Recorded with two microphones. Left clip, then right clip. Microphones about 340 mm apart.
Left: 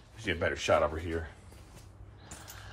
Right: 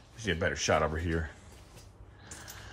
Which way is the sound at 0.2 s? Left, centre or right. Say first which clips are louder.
Right 1 dB; right.